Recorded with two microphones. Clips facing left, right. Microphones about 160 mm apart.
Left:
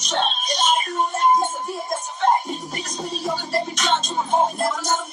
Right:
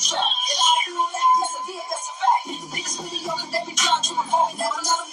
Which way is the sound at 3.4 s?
60° left (ahead or behind).